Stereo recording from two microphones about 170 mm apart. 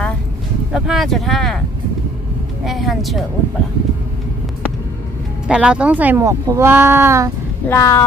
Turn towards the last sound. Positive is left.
turn(degrees=15)  # may be behind; listen again after turning